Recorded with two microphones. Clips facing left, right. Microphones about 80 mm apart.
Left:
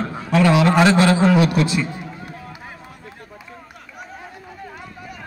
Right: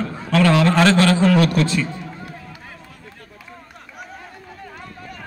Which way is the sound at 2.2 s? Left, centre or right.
Centre.